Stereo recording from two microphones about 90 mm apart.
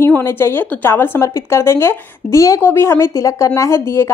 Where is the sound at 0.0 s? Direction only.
25° left (ahead or behind).